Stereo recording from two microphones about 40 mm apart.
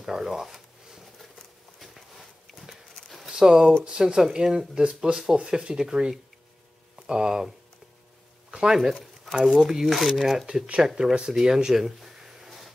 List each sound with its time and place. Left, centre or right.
0.0 s a sound: centre
3.3 s speech: centre
8.5 s speech: centre
9.8 s speech: centre
11.0 s speech: centre